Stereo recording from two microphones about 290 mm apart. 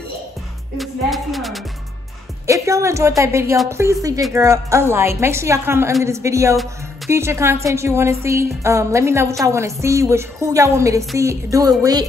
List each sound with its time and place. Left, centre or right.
0.7 s music: centre
2.4 s a woman's voice: centre